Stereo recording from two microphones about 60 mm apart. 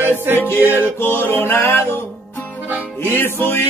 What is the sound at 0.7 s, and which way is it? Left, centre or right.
Music, left.